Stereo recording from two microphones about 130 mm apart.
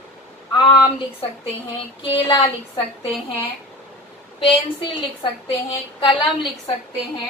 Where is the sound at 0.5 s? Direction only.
40° left (ahead or behind).